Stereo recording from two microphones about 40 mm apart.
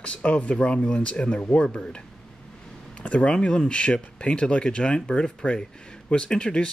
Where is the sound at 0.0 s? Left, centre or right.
Left.